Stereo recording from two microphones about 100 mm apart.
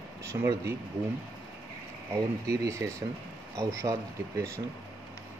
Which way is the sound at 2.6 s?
30° right (ahead or behind).